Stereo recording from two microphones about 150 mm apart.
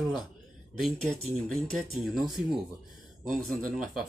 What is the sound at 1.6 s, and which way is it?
Speech, centre (ahead or behind).